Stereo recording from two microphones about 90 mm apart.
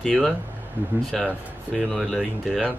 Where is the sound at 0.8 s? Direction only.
20° right (ahead or behind).